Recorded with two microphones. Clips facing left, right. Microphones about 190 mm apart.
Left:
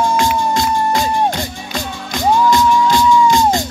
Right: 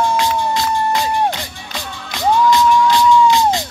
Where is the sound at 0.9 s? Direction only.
45° left (ahead or behind).